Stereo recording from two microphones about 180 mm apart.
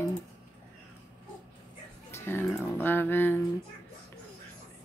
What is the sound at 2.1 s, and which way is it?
Music, 15° left (ahead or behind).